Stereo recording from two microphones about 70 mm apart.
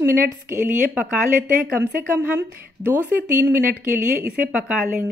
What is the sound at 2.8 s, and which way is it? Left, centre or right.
Speech, right.